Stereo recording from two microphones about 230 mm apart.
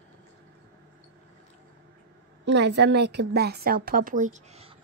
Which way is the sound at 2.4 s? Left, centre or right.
Right.